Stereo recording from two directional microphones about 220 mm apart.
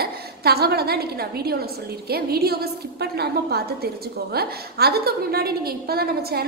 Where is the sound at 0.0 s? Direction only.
45° right (ahead or behind).